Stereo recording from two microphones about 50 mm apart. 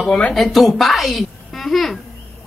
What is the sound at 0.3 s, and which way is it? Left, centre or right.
A woman's voice, centre.